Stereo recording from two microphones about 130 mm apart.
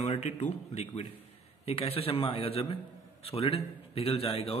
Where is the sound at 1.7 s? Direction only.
50° left (ahead or behind).